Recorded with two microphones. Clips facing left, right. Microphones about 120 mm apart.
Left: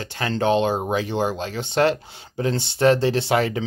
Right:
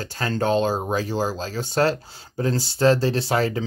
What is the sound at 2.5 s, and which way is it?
Speech, 5° right (ahead or behind).